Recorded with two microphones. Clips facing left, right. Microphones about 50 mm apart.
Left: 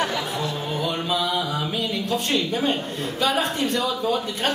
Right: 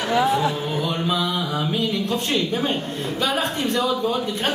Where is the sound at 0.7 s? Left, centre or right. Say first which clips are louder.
Right 2 dB; centre.